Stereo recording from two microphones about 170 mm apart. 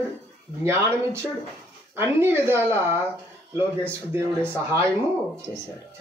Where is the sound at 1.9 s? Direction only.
15° right (ahead or behind).